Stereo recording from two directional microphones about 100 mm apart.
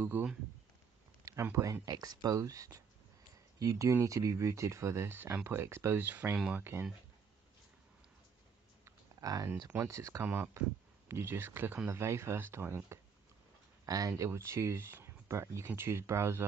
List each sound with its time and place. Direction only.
0.0 s speech: 20° right (ahead or behind)
1.2 s speech: 30° right (ahead or behind)
8.8 s a sound: 35° right (ahead or behind)
9.7 s speech: 30° right (ahead or behind)
13.8 s speech: 35° right (ahead or behind)